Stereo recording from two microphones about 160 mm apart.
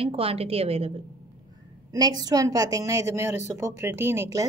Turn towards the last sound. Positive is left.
turn(degrees=-15)  # may be behind; listen again after turning